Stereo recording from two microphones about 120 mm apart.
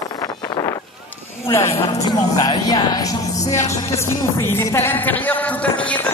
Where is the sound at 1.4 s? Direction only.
20° left (ahead or behind).